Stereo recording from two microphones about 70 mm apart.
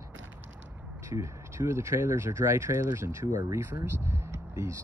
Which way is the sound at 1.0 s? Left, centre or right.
Right.